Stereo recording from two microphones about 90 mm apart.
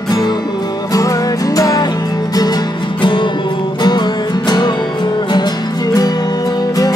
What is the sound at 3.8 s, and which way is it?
Music, 50° left (ahead or behind).